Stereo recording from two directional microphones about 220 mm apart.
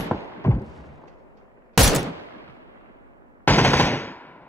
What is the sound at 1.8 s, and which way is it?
Fusillade, centre (ahead or behind).